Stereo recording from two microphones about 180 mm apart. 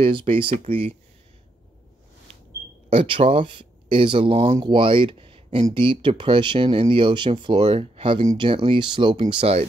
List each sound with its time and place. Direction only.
0.0 s speech: 30° right (ahead or behind)
2.9 s speech: 30° right (ahead or behind)